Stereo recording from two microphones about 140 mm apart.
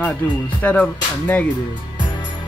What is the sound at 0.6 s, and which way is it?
Speech, 10° left (ahead or behind).